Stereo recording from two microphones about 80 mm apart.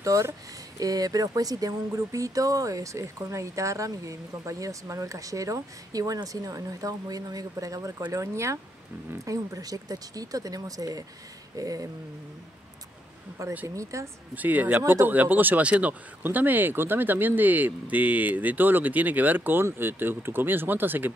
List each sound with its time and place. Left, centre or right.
0.0 s speech: right
11.5 s a sound: right
13.4 s speech: right
14.3 s speech: right